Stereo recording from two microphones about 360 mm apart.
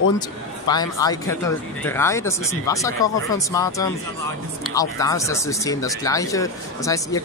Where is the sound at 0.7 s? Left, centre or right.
Centre.